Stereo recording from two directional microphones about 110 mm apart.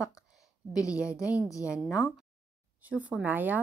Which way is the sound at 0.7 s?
30° left (ahead or behind).